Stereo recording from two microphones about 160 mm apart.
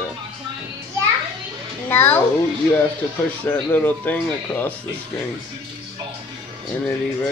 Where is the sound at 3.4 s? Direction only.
10° left (ahead or behind).